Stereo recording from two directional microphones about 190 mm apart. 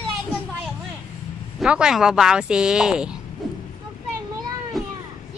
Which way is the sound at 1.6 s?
5° right (ahead or behind).